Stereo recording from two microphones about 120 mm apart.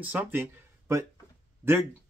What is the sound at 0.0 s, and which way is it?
Speech, 15° right (ahead or behind).